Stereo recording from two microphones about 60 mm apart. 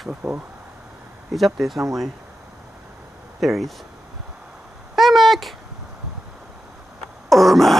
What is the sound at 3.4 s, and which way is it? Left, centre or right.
Speech, centre.